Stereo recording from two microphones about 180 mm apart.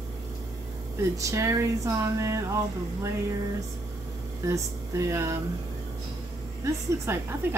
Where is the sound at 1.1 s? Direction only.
15° right (ahead or behind).